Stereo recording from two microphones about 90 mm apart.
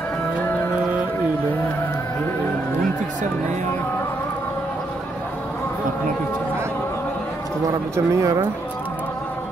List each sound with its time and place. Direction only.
7.6 s speech: 35° right (ahead or behind)